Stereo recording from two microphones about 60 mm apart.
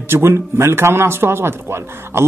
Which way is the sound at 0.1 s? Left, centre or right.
Right.